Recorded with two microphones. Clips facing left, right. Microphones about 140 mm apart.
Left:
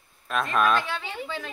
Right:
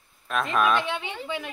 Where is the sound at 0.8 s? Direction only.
20° right (ahead or behind).